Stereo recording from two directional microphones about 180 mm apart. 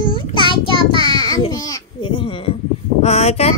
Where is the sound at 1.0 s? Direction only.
20° left (ahead or behind).